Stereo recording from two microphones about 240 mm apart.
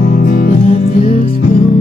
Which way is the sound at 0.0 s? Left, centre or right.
Left.